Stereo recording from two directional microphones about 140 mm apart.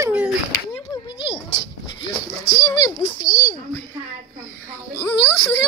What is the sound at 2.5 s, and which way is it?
Speech, 25° left (ahead or behind).